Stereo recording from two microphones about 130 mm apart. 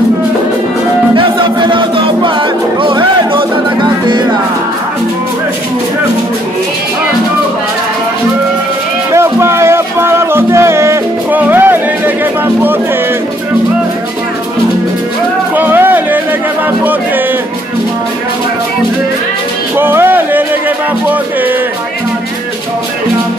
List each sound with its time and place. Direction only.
1.1 s music: 40° right (ahead or behind)
9.1 s music: 20° right (ahead or behind)
15.5 s music: 15° right (ahead or behind)
19.8 s music: 15° right (ahead or behind)